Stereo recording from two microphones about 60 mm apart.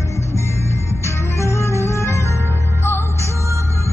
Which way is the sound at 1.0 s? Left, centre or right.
Left.